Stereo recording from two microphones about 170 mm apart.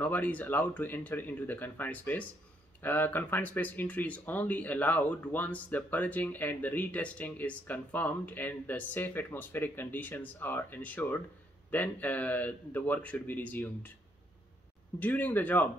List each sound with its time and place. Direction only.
0.0 s speech: 10° left (ahead or behind)
15.0 s speech: 10° left (ahead or behind)